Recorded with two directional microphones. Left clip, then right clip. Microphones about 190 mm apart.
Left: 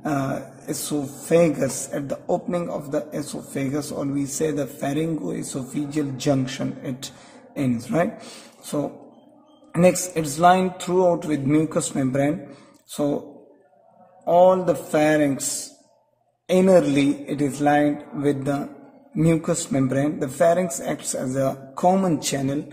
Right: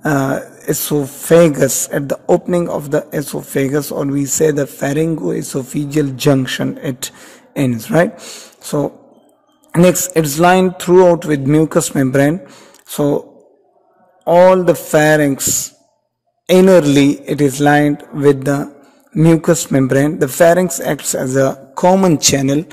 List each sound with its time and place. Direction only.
0.0 s a man's voice: 50° right (ahead or behind)
14.2 s a man's voice: 40° right (ahead or behind)
16.4 s a man's voice: 45° right (ahead or behind)